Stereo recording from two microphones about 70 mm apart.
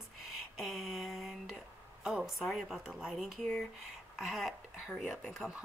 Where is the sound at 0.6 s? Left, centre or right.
Centre.